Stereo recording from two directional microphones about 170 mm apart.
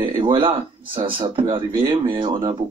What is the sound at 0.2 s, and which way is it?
Speech, 30° right (ahead or behind).